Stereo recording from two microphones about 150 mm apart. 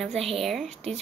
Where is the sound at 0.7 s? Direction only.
45° right (ahead or behind).